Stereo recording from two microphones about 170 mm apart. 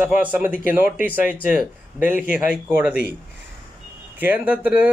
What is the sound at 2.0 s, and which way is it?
Speech, 10° right (ahead or behind).